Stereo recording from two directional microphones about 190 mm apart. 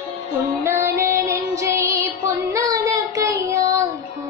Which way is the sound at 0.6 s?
15° right (ahead or behind).